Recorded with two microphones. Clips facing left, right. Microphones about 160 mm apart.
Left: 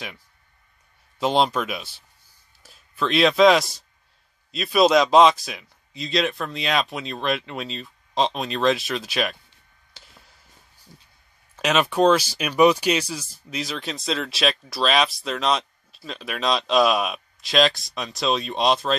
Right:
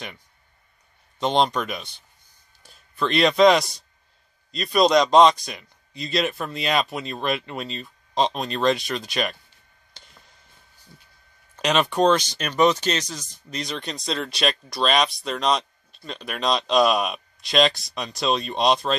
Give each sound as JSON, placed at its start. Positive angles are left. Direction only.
{"t": 1.2, "sound": "speech", "side_deg": 5}
{"t": 9.9, "sound": "a sound", "side_deg": 5}
{"t": 11.5, "sound": "speech", "side_deg": 5}